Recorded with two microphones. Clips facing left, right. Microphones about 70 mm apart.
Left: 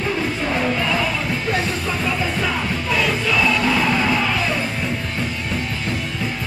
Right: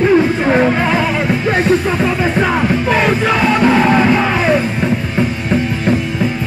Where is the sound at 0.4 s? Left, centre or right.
Right.